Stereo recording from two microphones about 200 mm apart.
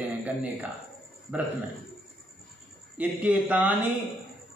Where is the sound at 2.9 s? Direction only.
5° right (ahead or behind).